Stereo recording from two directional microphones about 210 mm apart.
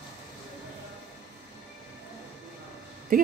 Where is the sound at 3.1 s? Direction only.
40° right (ahead or behind).